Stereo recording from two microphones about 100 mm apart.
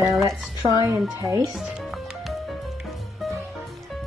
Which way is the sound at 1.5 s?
Centre (ahead or behind).